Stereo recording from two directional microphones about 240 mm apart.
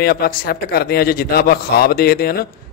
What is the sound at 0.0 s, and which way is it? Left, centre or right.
A man's voice, left.